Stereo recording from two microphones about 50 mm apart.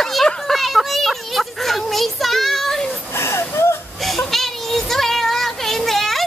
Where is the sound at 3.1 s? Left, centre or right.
Left.